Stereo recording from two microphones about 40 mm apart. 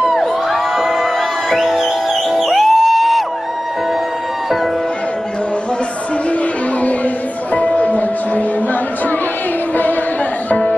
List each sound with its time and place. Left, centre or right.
0.1 s music: centre
7.5 s music: left